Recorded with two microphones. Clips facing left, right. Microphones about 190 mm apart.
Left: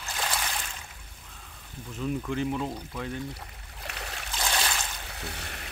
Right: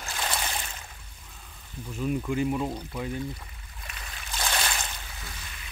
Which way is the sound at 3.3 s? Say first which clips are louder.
Right 1 dB; 70° left (ahead or behind).